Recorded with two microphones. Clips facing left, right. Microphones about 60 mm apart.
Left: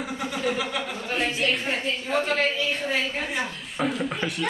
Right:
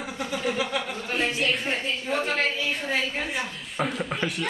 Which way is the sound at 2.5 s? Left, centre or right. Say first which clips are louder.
Left 1 dB; centre.